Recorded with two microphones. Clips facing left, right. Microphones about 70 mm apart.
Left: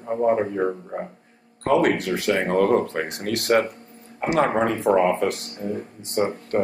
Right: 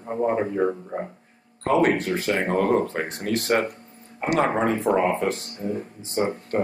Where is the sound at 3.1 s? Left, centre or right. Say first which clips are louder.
Left 2 dB; left.